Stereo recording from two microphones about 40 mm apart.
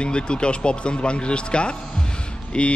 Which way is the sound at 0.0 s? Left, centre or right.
Left.